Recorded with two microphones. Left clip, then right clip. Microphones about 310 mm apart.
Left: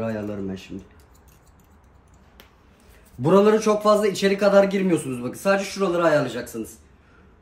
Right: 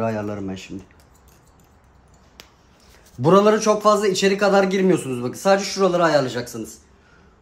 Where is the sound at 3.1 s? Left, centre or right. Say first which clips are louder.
Right 2 dB; right.